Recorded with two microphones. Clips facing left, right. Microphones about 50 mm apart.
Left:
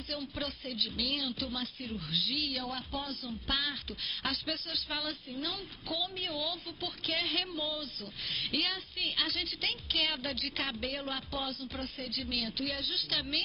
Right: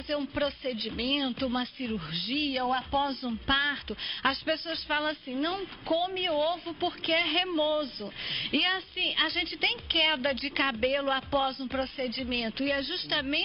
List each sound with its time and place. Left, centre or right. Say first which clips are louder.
0.1 s a woman's voice: right 9 dB; right